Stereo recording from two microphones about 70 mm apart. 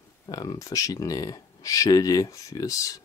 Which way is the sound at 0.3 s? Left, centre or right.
Left.